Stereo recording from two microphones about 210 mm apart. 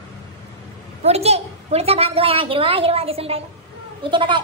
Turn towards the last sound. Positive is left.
turn(degrees=-20)  # may be behind; listen again after turning